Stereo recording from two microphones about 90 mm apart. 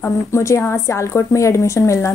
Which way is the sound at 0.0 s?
30° left (ahead or behind).